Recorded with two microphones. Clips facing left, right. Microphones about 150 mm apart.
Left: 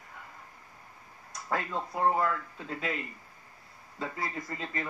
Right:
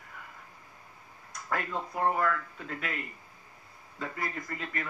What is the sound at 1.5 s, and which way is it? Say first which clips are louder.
Speech: left 1 dB; 25° left (ahead or behind).